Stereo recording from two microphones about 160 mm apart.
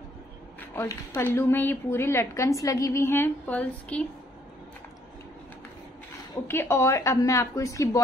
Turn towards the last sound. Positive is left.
turn(degrees=20)  # may be behind; listen again after turning